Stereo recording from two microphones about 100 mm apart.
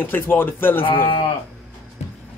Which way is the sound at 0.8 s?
60° left (ahead or behind).